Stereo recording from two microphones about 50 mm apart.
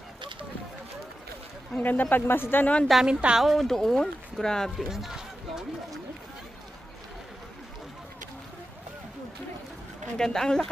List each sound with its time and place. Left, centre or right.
1.8 s a woman's voice: left
2.6 s a woman's voice: left
3.1 s a woman's voice: right
3.3 s speech: centre
4.7 s a sound: centre
10.1 s speech: centre